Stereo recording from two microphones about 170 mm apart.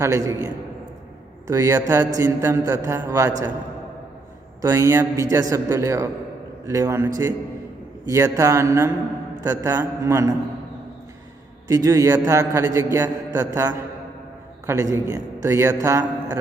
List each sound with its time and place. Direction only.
0.0 s a man's voice: 15° right (ahead or behind)
1.5 s a man's voice: 15° right (ahead or behind)
4.6 s a man's voice: 15° right (ahead or behind)
11.6 s a man's voice: 20° right (ahead or behind)